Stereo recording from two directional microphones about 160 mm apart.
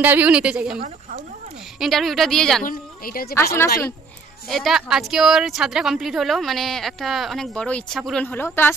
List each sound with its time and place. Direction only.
0.0 s a woman's voice: 10° right (ahead or behind)
1.8 s a woman's voice: centre (ahead or behind)
2.6 s speech: 60° left (ahead or behind)
4.5 s a woman's voice: centre (ahead or behind)